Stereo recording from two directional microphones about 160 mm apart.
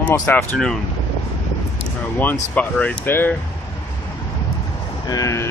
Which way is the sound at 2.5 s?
5° left (ahead or behind).